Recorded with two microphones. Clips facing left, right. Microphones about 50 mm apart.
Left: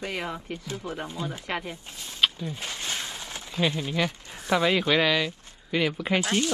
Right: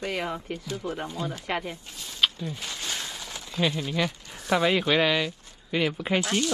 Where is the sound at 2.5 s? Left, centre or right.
Left.